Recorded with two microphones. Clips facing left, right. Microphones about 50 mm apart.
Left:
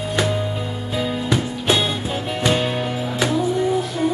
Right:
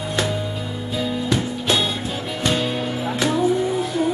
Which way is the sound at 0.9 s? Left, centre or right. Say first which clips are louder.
Left 1 dB; centre.